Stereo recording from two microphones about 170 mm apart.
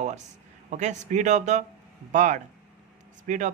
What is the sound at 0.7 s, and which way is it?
Speech, 45° right (ahead or behind).